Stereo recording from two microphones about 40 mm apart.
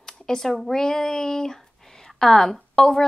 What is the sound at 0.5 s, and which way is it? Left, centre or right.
A woman's voice, centre.